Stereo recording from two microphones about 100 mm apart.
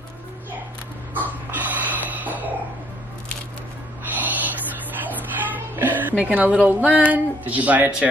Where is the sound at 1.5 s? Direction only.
15° right (ahead or behind).